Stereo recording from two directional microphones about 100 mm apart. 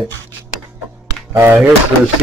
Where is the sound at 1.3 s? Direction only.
25° right (ahead or behind).